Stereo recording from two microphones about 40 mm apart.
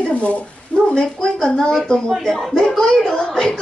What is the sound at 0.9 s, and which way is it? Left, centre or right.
Speech, centre.